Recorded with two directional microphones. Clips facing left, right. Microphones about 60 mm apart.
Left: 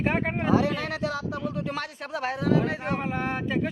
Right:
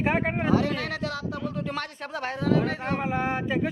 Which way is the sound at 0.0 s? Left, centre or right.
Centre.